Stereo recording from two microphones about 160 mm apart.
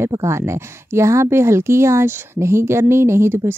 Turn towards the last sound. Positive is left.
turn(degrees=-15)  # may be behind; listen again after turning